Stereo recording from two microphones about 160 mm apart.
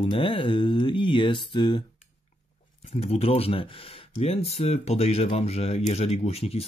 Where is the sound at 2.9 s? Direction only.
40° left (ahead or behind).